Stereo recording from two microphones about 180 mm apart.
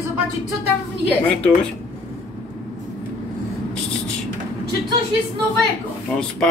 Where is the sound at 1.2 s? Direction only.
5° left (ahead or behind).